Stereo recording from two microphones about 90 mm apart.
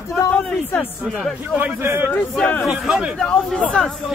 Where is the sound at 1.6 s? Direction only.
20° right (ahead or behind).